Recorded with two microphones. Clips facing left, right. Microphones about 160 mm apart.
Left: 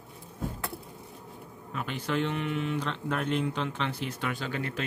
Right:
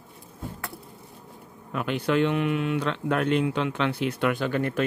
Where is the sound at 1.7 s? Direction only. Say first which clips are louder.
Right 7 dB; 65° right (ahead or behind).